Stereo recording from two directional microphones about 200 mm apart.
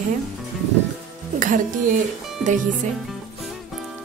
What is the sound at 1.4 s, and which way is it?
Speech, 40° right (ahead or behind).